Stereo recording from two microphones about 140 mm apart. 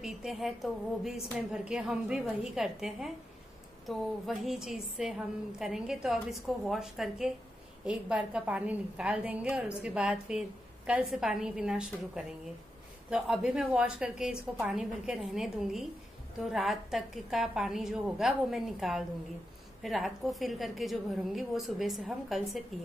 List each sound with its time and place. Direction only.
0.0 s a woman's voice: centre (ahead or behind)